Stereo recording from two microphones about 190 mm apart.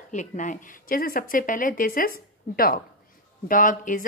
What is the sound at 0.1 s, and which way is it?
Speech, 40° left (ahead or behind).